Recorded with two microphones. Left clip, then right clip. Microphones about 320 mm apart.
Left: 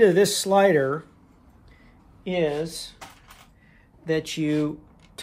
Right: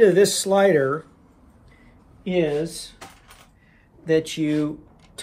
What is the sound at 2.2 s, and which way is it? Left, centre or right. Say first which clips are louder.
Speech: right 2 dB; left.